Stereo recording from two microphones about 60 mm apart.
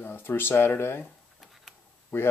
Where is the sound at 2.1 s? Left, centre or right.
Left.